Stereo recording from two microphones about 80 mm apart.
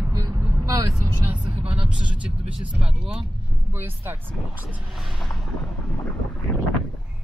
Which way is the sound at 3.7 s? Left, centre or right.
Right.